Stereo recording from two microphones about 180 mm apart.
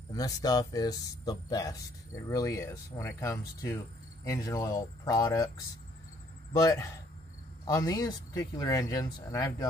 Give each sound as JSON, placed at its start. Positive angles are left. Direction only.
{"t": 0.1, "sound": "speech", "side_deg": 20}
{"t": 6.6, "sound": "speech", "side_deg": 20}